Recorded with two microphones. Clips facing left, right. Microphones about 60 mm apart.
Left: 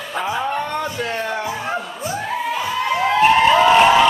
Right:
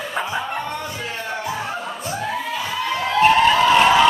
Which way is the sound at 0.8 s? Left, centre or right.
Left.